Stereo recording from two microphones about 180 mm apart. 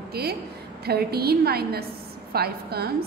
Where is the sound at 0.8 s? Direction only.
60° right (ahead or behind).